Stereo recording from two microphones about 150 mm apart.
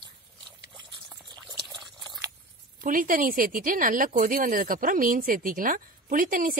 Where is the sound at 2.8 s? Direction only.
65° right (ahead or behind).